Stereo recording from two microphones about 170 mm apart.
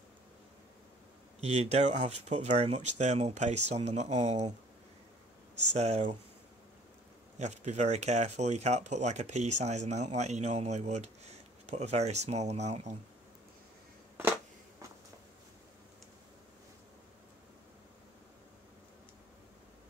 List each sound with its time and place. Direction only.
1.4 s speech: 40° right (ahead or behind)
5.7 s speech: 40° right (ahead or behind)
7.3 s speech: 40° right (ahead or behind)